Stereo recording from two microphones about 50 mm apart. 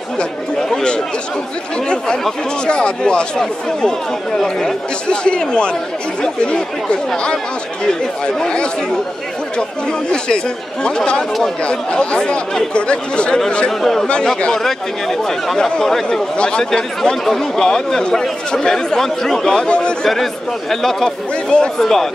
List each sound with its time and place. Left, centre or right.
0.2 s speech: centre
2.6 s speech: centre
5.0 s speech: centre
8.4 s speech: centre
13.7 s speech: centre
14.0 s speech: left